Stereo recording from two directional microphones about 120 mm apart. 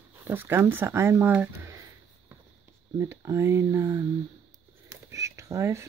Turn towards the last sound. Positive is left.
turn(degrees=-25)  # may be behind; listen again after turning